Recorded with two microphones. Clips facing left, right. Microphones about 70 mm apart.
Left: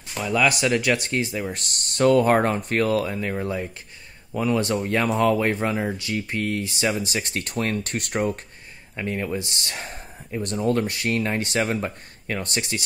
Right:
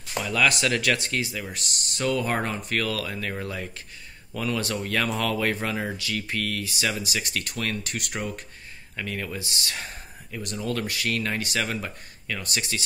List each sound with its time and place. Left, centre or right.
0.2 s speech: centre
1.6 s speech: left
8.9 s speech: left